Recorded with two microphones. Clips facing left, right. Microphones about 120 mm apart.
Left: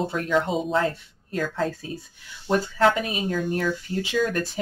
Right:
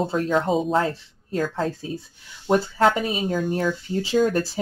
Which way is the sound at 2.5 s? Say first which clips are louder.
Right 2 dB; 30° right (ahead or behind).